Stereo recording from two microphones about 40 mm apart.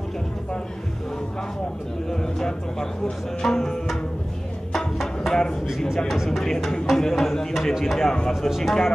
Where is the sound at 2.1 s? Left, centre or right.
Centre.